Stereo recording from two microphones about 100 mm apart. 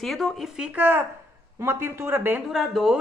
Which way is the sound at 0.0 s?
Centre (ahead or behind).